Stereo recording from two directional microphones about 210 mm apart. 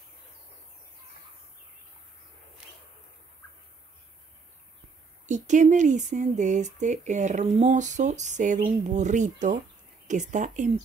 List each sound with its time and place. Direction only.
5.2 s speech: 35° right (ahead or behind)